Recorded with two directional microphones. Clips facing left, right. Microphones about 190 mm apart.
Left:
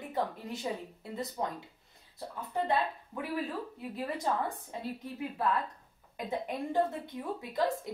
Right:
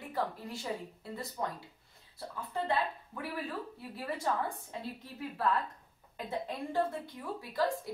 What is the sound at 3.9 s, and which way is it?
Speech, 20° left (ahead or behind).